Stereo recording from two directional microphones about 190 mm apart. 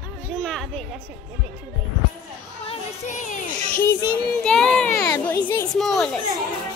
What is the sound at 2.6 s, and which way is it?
Child singing, 40° left (ahead or behind).